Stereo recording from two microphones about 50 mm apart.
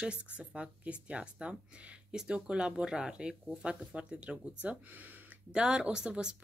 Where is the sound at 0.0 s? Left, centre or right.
Right.